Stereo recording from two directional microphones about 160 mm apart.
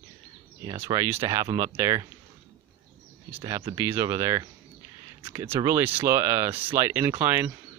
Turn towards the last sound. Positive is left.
turn(degrees=-15)  # may be behind; listen again after turning